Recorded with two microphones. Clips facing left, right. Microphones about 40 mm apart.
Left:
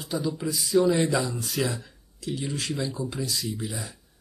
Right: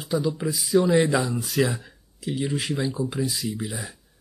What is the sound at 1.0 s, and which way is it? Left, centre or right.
Speech, right.